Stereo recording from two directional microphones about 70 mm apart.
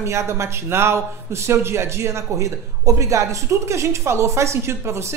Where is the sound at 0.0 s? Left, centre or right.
Right.